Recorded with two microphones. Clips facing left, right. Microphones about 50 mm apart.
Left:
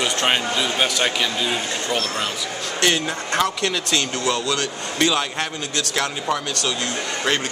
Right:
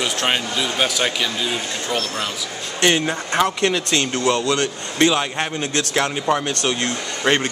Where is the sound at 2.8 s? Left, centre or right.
Right.